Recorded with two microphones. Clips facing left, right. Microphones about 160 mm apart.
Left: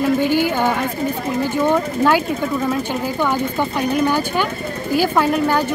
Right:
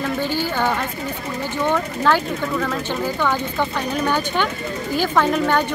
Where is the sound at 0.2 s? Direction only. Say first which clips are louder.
Left 5 dB; 15° left (ahead or behind).